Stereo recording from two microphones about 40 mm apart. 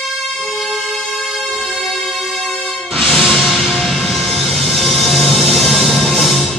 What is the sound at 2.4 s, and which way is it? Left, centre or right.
Music, left.